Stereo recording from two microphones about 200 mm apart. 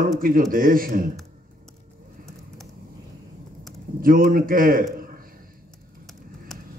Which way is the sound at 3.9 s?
45° right (ahead or behind).